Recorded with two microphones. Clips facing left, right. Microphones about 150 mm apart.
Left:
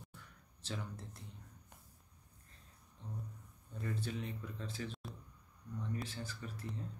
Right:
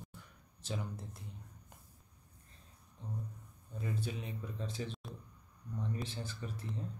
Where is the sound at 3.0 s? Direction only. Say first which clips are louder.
Right 4 dB; 15° right (ahead or behind).